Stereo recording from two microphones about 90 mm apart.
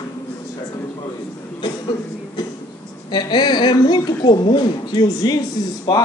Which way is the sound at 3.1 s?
55° left (ahead or behind).